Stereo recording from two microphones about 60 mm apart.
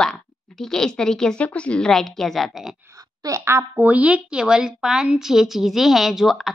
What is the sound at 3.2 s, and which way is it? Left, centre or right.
Speech, right.